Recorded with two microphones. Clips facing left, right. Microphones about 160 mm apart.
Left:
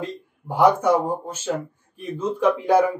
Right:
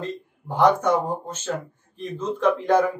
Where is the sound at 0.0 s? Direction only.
10° left (ahead or behind).